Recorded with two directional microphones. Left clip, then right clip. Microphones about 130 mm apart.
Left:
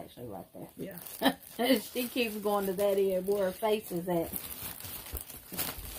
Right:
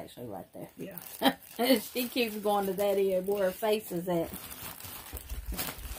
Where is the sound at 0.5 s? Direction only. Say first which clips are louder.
Even; 40° right (ahead or behind); by 3.7 s 25° right (ahead or behind).